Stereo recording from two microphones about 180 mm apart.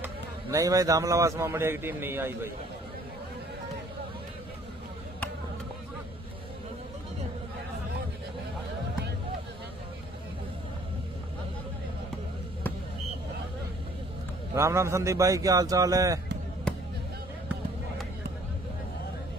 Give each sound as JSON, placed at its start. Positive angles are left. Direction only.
{"t": 0.0, "sound": "a man's voice", "side_deg": -15}
{"t": 14.5, "sound": "a man's voice", "side_deg": -15}
{"t": 16.7, "sound": "music", "side_deg": 5}